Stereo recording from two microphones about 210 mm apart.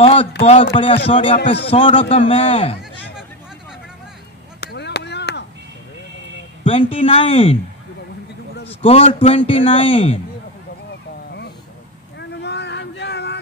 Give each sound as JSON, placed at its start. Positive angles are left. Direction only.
{"t": 0.0, "sound": "a sound", "side_deg": 30}
{"t": 0.4, "sound": "a man's voice", "side_deg": 30}
{"t": 4.6, "sound": "chop", "side_deg": 55}
{"t": 6.6, "sound": "a man's voice", "side_deg": 25}
{"t": 8.8, "sound": "a man's voice", "side_deg": 30}
{"t": 12.2, "sound": "a sound", "side_deg": 55}